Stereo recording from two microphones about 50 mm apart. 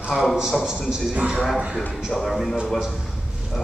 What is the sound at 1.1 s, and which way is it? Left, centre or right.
Speech, right.